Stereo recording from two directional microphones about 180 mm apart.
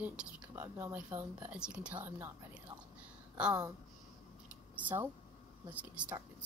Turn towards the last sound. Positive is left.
turn(degrees=-10)  # may be behind; listen again after turning